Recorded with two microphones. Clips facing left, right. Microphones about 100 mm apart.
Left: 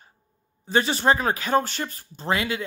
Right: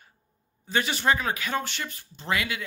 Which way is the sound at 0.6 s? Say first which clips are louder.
Left 4 dB; 35° left (ahead or behind).